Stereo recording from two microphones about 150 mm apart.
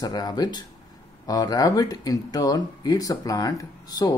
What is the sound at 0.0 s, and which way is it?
Speech, 25° left (ahead or behind).